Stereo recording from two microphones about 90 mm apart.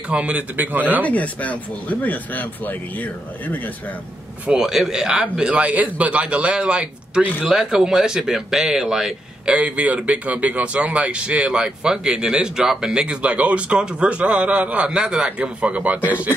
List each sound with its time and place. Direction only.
0.1 s speech: 15° right (ahead or behind)
1.0 s speech: 15° left (ahead or behind)
4.5 s speech: 5° right (ahead or behind)